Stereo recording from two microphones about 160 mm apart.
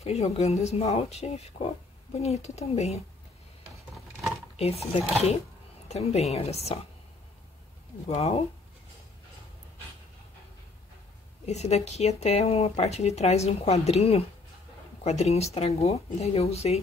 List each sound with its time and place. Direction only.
0.0 s speech: 40° left (ahead or behind)
4.6 s speech: 40° left (ahead or behind)
5.9 s speech: 45° left (ahead or behind)
8.1 s speech: 35° left (ahead or behind)
11.4 s speech: 45° left (ahead or behind)